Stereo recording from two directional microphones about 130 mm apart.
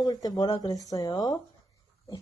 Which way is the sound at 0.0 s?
30° left (ahead or behind).